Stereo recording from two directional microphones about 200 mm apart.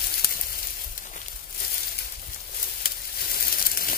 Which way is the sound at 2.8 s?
50° left (ahead or behind).